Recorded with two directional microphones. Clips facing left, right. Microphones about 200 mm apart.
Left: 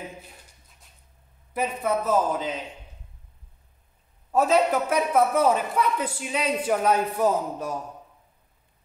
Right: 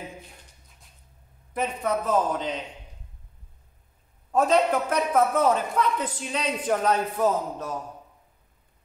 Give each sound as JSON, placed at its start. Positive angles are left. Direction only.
{"t": 1.5, "sound": "a man's voice", "side_deg": 5}
{"t": 4.3, "sound": "a man's voice", "side_deg": 5}